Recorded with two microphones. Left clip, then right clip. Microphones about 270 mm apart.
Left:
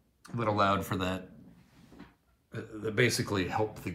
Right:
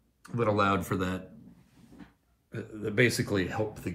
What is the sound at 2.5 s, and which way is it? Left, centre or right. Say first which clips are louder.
Speech: right 2 dB; centre.